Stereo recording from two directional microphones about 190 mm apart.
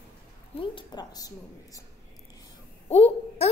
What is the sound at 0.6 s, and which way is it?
A woman's voice, 25° left (ahead or behind).